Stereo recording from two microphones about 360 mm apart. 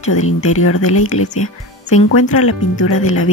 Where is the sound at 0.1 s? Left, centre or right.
Left.